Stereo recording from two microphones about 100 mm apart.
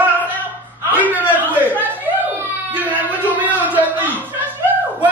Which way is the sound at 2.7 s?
15° right (ahead or behind).